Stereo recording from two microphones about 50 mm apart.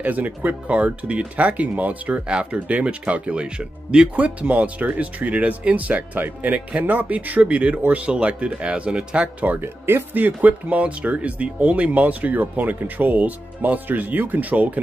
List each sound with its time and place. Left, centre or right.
0.0 s speech: right
0.7 s speech: right
4.1 s speech: right
9.5 s speech: right